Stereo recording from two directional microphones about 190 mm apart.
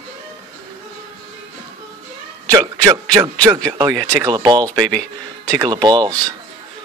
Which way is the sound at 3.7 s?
20° right (ahead or behind).